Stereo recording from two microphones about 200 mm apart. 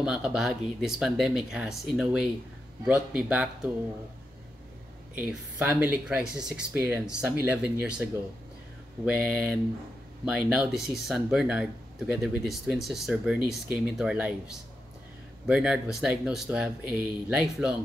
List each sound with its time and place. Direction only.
0.0 s speech: 5° right (ahead or behind)
5.1 s speech: 5° right (ahead or behind)
15.4 s speech: 5° right (ahead or behind)